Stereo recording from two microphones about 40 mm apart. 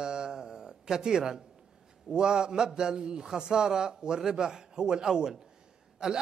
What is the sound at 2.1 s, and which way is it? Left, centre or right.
A man's voice, centre.